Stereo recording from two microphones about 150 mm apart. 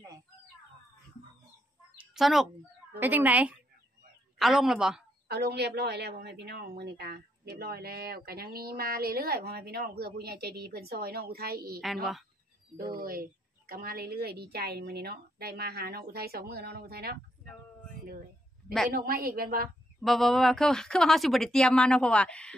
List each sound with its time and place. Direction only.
2.0 s chicken: centre (ahead or behind)
3.0 s speech: 10° right (ahead or behind)
5.3 s a woman's voice: 90° right
13.0 s a woman's voice: 75° right (ahead or behind); by 17.2 s 90° right
18.9 s a woman's voice: 80° right
20.0 s speech: centre (ahead or behind)